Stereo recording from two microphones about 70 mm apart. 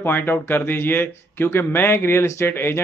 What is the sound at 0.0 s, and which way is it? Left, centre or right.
Speech, left.